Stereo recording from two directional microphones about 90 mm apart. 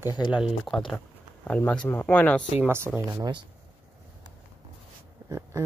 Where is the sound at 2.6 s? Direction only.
25° right (ahead or behind).